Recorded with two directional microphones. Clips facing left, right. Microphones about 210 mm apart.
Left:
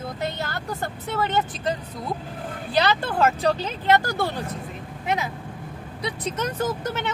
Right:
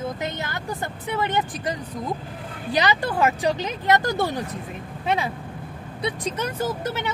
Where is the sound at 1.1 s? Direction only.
15° right (ahead or behind).